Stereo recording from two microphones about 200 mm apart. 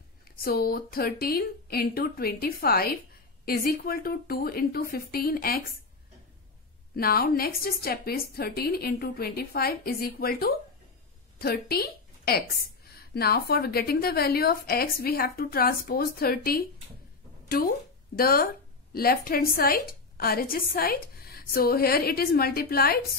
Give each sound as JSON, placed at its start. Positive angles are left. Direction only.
{"t": 0.4, "sound": "a woman's voice", "side_deg": 50}
{"t": 7.0, "sound": "a woman's voice", "side_deg": 50}